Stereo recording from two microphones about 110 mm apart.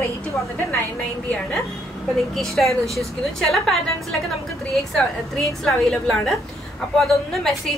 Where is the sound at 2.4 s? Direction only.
Centre (ahead or behind).